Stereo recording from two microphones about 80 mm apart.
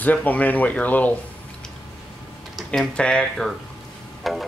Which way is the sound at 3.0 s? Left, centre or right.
Centre.